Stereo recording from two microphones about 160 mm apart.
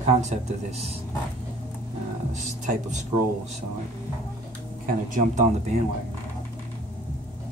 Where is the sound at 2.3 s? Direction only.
50° right (ahead or behind).